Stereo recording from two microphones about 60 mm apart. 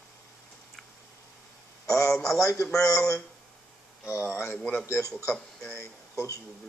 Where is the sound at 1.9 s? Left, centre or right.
Left.